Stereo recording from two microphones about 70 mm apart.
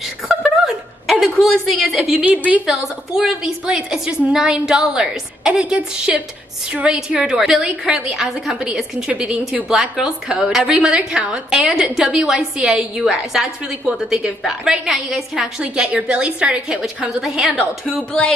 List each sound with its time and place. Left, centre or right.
0.0 s a sound: centre
1.2 s a woman's voice: centre
2.1 s a woman's voice: right
2.6 s a woman's voice: centre